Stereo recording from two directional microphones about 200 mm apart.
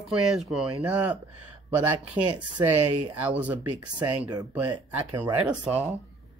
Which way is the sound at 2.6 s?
10° right (ahead or behind).